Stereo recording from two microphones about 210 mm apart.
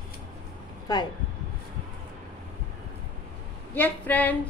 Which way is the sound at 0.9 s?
20° left (ahead or behind).